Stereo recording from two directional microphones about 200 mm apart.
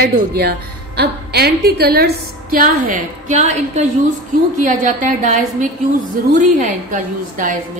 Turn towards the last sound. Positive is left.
turn(degrees=-40)  # may be behind; listen again after turning